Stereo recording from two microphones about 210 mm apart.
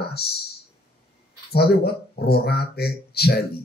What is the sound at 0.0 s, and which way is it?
Clicking, 50° left (ahead or behind).